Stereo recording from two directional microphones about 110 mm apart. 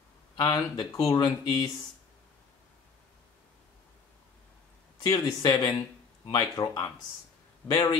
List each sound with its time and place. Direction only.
0.4 s speech: 40° left (ahead or behind)
5.0 s speech: 40° left (ahead or behind)